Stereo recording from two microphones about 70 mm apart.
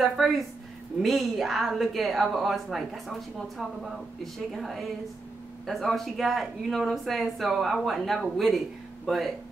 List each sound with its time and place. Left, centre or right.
1.0 s speech: centre